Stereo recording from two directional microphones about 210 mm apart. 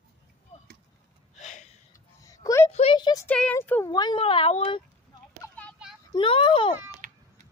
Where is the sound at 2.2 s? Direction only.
15° left (ahead or behind).